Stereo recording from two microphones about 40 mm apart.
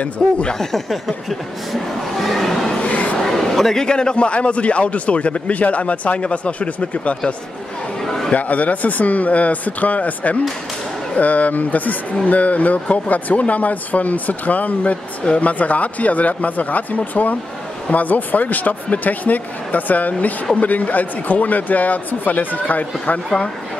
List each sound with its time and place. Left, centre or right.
0.0 s speech: left
0.6 s speech: centre
2.8 s a sound: left
3.2 s a sound: centre
3.8 s speech: left
8.0 s chatter: centre
8.3 s speech: left